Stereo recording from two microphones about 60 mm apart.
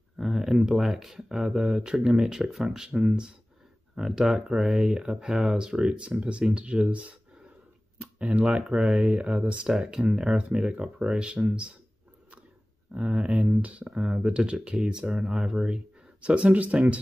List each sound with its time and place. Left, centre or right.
0.2 s speech: centre
12.9 s speech: centre